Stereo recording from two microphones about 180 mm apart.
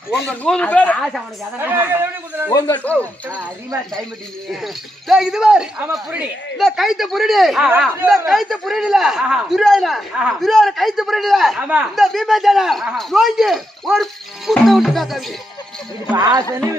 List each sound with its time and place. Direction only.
0.3 s speech: 5° left (ahead or behind)
1.6 s a man's voice: 10° right (ahead or behind)
2.5 s speech: 20° left (ahead or behind)
2.8 s speech: 10° left (ahead or behind)
3.3 s a man's voice: 10° right (ahead or behind)
16.2 s speech: 20° right (ahead or behind)